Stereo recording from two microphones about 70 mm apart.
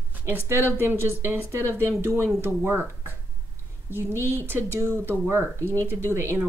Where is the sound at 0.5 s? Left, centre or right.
Right.